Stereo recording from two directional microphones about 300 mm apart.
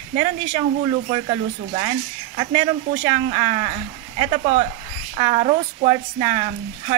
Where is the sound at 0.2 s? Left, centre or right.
Centre.